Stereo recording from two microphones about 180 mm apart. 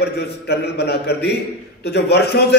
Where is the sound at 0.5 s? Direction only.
65° left (ahead or behind).